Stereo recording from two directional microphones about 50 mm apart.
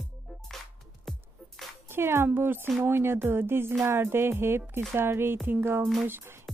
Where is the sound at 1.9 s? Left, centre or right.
Right.